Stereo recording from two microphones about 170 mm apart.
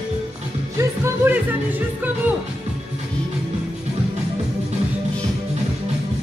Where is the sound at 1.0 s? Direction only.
10° right (ahead or behind).